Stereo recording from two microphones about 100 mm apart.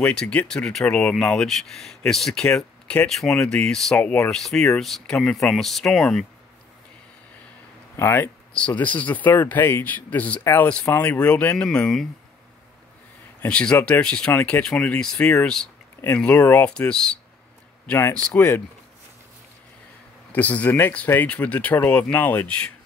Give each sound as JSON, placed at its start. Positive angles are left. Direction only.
{"t": 0.0, "sound": "speech", "side_deg": 10}
{"t": 8.0, "sound": "speech", "side_deg": 20}
{"t": 13.4, "sound": "speech", "side_deg": 10}
{"t": 18.3, "sound": "speech", "side_deg": 25}
{"t": 20.3, "sound": "speech", "side_deg": 15}